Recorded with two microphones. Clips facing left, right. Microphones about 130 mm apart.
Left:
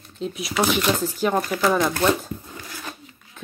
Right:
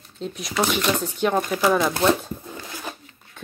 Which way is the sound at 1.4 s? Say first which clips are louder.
Right 1 dB; 15° right (ahead or behind).